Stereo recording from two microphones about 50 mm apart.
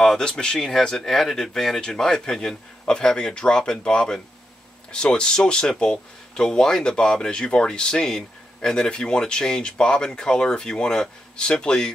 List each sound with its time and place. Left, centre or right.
0.2 s speech: centre